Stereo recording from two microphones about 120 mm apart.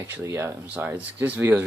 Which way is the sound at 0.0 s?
20° right (ahead or behind).